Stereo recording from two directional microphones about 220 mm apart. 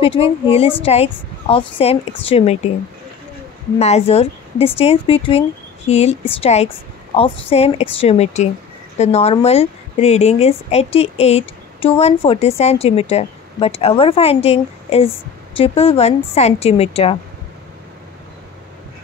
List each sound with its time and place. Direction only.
0.0 s speech: 25° left (ahead or behind)
3.8 s speech: 30° left (ahead or behind)